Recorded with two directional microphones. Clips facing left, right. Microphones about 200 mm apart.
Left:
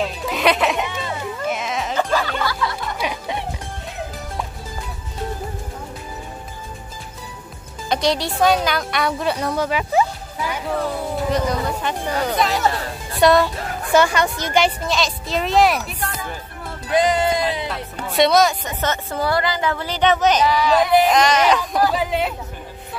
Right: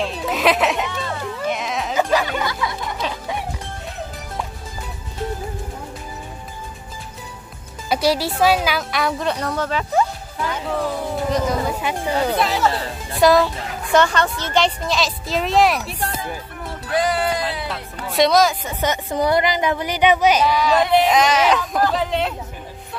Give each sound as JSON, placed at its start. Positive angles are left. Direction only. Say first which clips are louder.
{"t": 0.0, "sound": "music", "louder": "even", "side_deg": 0}
{"t": 0.8, "sound": "music", "louder": "even", "side_deg": 15}
{"t": 3.0, "sound": "music", "louder": "left 2 dB", "side_deg": 15}
{"t": 7.9, "sound": "a woman's voice", "louder": "right 1 dB", "side_deg": -5}
{"t": 13.9, "sound": "a woman's voice", "louder": "even", "side_deg": 10}
{"t": 16.8, "sound": "music", "louder": "left 3 dB", "side_deg": 20}
{"t": 18.0, "sound": "a woman's voice", "louder": "even", "side_deg": 0}